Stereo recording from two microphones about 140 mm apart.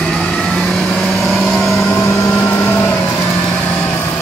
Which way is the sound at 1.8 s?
15° left (ahead or behind).